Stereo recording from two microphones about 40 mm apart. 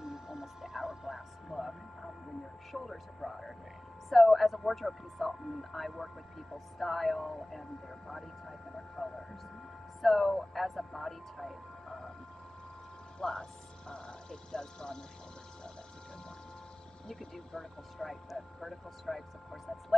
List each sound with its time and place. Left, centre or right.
0.0 s a sound: centre
4.1 s speech: centre
13.2 s speech: centre
17.1 s speech: centre